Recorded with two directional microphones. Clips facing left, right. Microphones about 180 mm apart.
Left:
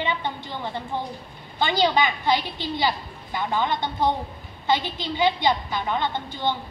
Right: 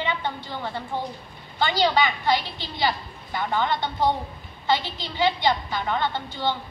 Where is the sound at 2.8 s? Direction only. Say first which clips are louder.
Right 3 dB; 15° left (ahead or behind).